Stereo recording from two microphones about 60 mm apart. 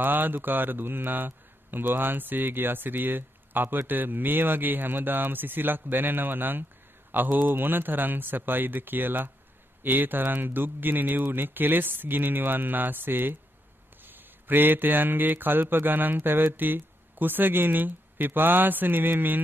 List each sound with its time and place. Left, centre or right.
0.0 s a man's voice: right